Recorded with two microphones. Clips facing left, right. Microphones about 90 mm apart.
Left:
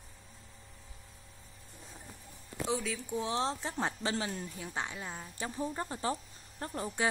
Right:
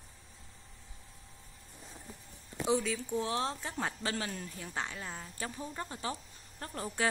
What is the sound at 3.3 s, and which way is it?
A woman's voice, 25° left (ahead or behind).